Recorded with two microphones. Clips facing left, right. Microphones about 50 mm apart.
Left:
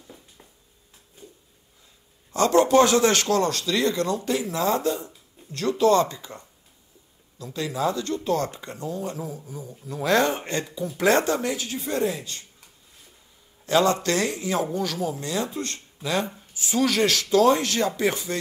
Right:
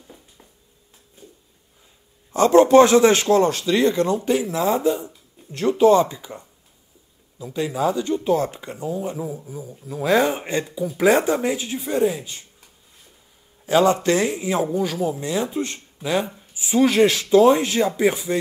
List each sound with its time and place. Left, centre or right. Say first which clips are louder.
0.0 s a sound: right 1 dB; centre
2.3 s speech: right 5 dB; right
13.7 s a man's voice: right 4 dB; centre
16.8 s speech: right 6 dB; right